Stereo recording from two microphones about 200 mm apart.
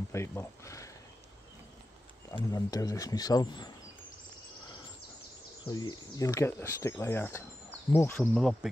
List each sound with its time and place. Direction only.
0.1 s speech: 15° left (ahead or behind)
2.3 s speech: 20° left (ahead or behind)
5.7 s speech: 20° left (ahead or behind)